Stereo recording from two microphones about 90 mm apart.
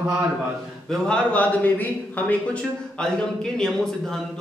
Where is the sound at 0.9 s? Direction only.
15° left (ahead or behind).